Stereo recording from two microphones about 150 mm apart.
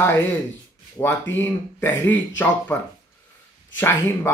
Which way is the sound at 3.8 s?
15° left (ahead or behind).